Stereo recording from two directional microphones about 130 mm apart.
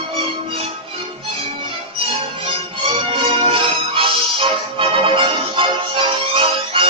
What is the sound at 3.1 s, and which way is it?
Music, 40° right (ahead or behind).